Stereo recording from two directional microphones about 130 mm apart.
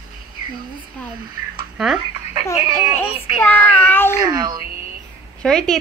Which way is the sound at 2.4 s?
20° left (ahead or behind).